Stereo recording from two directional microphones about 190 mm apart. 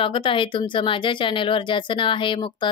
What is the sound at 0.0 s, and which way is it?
Speech, 25° left (ahead or behind).